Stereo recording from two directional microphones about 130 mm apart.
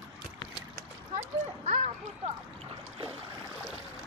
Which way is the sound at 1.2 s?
65° right (ahead or behind).